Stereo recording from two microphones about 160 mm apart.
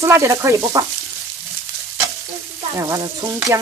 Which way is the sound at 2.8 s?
20° right (ahead or behind).